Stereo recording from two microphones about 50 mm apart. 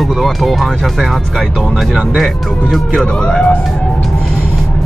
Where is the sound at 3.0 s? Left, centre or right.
Centre.